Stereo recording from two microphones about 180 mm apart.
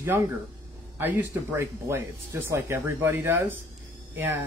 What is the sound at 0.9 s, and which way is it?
Speech, 10° right (ahead or behind).